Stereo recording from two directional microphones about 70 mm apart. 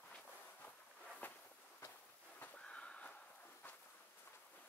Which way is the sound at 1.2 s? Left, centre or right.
Left.